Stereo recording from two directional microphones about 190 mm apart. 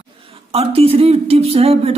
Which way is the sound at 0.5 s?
30° right (ahead or behind).